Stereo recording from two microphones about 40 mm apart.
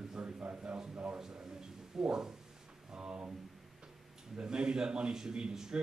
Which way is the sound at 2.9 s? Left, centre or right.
Right.